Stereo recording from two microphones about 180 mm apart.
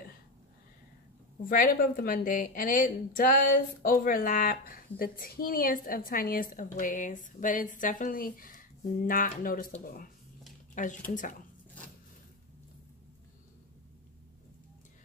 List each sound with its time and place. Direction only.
1.4 s a woman's voice: 50° left (ahead or behind)
10.7 s a sound: 45° left (ahead or behind)
11.1 s a woman's voice: 45° left (ahead or behind)